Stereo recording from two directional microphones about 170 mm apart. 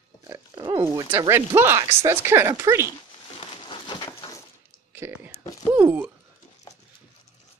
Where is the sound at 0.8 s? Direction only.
15° right (ahead or behind).